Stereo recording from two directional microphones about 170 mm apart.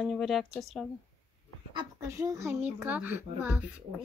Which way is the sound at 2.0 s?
20° right (ahead or behind).